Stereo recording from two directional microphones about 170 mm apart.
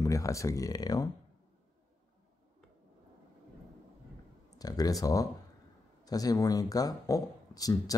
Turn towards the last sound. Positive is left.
turn(degrees=20)  # may be behind; listen again after turning